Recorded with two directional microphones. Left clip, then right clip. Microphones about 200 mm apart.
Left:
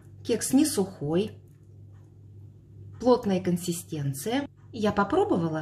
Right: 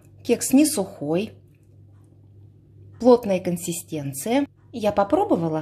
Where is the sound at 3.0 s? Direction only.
30° right (ahead or behind).